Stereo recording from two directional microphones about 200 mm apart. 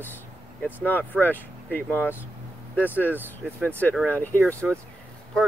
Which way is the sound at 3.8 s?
5° left (ahead or behind).